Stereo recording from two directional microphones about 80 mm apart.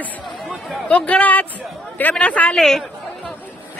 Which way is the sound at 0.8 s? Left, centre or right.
Centre.